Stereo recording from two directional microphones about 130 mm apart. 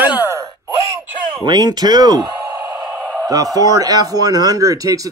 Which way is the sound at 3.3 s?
25° right (ahead or behind).